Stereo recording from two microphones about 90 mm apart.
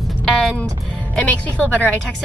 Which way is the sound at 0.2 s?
5° left (ahead or behind).